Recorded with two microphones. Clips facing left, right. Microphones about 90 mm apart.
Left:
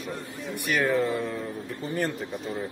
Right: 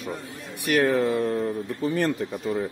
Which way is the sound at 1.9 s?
90° right.